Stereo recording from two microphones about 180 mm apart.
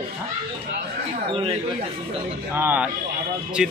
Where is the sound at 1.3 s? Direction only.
30° right (ahead or behind).